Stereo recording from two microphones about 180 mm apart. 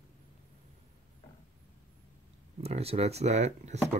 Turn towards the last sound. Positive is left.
turn(degrees=-40)  # may be behind; listen again after turning